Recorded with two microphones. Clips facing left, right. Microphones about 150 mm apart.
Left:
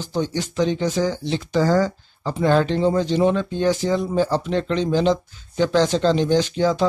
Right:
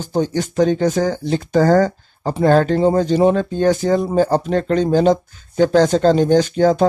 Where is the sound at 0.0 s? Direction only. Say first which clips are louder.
Right 5 dB; 45° right (ahead or behind).